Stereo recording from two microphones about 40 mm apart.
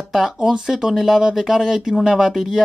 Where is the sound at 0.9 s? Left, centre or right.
Centre.